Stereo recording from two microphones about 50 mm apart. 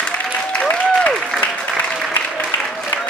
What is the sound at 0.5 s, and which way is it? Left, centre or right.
Applause, left.